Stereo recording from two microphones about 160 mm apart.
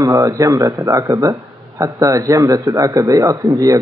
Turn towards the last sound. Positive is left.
turn(degrees=-20)  # may be behind; listen again after turning